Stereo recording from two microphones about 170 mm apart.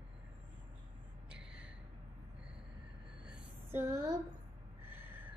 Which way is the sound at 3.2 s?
5° right (ahead or behind).